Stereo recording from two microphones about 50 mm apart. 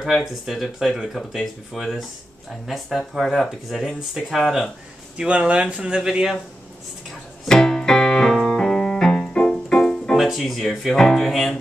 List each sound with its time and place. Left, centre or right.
0.1 s speech: centre
5.1 s speech: right
7.4 s keyboard: centre
10.1 s speech: centre